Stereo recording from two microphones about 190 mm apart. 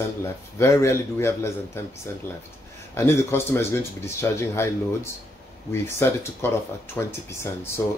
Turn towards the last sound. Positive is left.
turn(degrees=15)  # may be behind; listen again after turning